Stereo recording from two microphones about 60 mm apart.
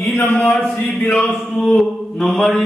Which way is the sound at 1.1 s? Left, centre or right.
Centre.